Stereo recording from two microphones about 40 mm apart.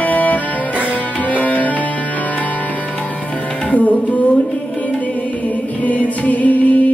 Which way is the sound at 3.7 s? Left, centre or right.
Left.